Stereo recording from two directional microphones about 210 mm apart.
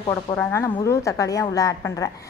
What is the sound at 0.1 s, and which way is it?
A woman's voice, 10° left (ahead or behind).